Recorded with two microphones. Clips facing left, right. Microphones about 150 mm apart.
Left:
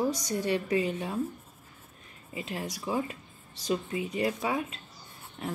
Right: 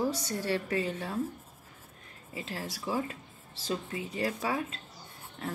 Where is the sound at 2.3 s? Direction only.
15° left (ahead or behind).